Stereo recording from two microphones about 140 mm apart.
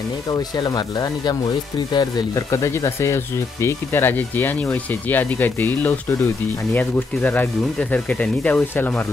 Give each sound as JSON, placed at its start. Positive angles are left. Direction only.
{"t": 0.3, "sound": "speech", "side_deg": 30}